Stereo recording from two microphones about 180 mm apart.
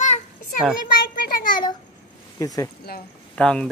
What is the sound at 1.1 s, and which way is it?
Child singing, 55° left (ahead or behind).